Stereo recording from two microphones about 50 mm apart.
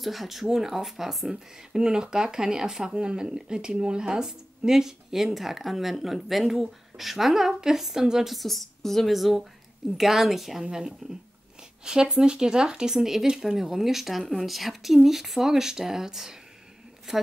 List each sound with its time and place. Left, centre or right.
0.0 s a woman's voice: centre
10.6 s speech: centre